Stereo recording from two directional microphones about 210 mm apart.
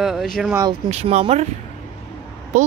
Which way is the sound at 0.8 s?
30° right (ahead or behind).